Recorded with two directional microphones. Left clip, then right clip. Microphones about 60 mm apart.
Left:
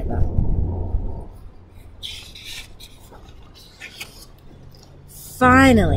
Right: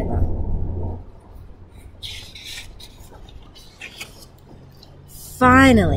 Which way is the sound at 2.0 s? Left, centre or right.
Centre.